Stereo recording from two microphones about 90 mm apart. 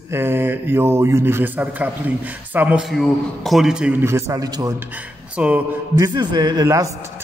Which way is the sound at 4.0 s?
30° right (ahead or behind).